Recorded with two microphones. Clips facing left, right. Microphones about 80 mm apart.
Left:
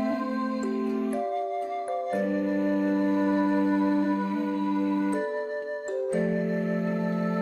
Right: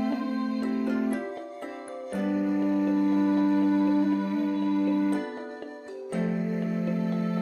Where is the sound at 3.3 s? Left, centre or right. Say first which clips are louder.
Right 1 dB; left.